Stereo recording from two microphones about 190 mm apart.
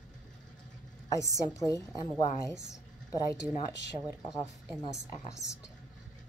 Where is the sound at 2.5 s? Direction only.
5° right (ahead or behind).